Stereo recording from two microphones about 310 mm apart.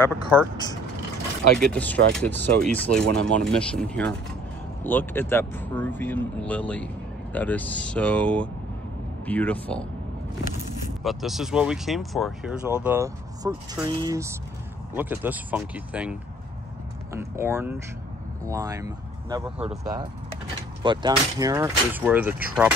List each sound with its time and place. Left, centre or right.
0.3 s speech: centre
1.6 s speech: centre
11.1 s speech: centre